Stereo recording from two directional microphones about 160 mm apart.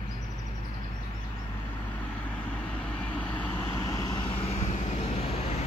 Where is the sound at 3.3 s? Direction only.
15° left (ahead or behind).